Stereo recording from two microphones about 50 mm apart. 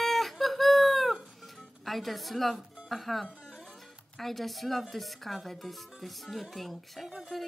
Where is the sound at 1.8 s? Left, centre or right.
Centre.